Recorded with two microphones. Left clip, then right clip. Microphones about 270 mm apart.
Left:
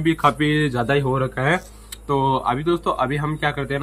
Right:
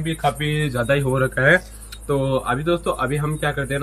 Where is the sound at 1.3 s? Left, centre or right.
Left.